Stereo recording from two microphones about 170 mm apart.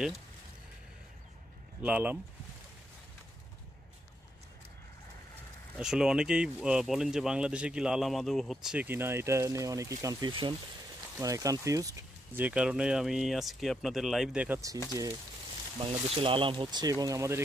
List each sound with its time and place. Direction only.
1.8 s speech: 10° right (ahead or behind)
5.8 s speech: 5° right (ahead or behind); by 12.4 s 20° right (ahead or behind)
12.4 s speech: 5° right (ahead or behind)
15.8 s speech: 30° right (ahead or behind)